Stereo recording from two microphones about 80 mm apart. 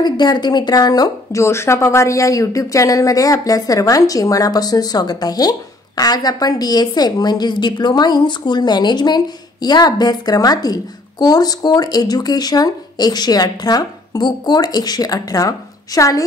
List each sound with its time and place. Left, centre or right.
0.0 s speech: left
1.4 s speech: left